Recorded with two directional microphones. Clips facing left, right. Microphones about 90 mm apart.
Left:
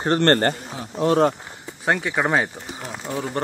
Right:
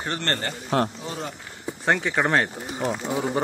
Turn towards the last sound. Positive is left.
turn(degrees=-15)  # may be behind; listen again after turning